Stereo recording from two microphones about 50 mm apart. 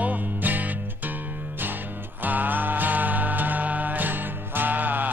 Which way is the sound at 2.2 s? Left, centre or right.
Right.